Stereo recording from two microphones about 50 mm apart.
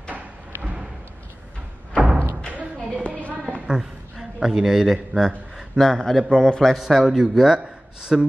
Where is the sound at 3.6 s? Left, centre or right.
Centre.